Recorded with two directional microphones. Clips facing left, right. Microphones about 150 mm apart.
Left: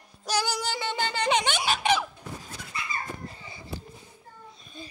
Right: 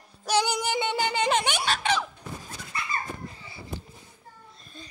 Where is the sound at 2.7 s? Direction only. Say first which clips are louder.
Right 2 dB; 55° right (ahead or behind).